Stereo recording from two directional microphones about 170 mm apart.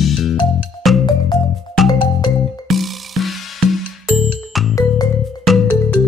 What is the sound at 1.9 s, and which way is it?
Music, 25° left (ahead or behind).